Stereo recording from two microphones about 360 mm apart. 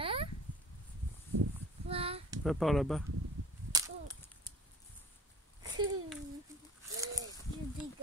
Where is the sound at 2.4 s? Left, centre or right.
Centre.